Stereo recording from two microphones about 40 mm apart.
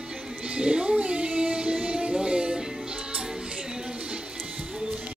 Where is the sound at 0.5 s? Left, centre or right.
Right.